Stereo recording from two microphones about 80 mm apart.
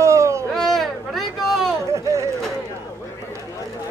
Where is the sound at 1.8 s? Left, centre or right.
Right.